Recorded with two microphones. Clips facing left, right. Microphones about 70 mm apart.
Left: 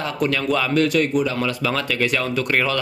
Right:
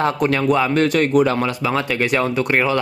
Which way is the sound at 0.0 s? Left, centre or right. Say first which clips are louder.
Right 5 dB; right.